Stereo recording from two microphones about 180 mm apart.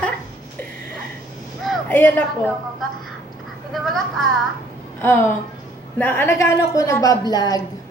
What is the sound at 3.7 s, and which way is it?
Speech, centre (ahead or behind).